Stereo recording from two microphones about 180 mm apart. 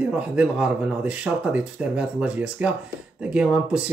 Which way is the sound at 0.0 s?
5° right (ahead or behind).